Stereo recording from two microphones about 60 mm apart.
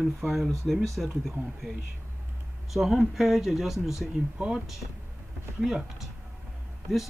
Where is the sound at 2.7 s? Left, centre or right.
Centre.